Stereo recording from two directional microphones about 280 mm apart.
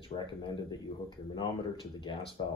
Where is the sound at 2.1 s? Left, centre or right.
Centre.